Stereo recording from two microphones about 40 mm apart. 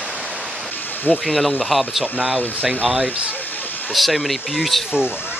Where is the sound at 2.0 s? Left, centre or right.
Right.